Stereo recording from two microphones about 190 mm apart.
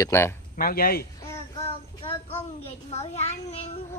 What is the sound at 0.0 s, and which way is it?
Speech, 15° left (ahead or behind).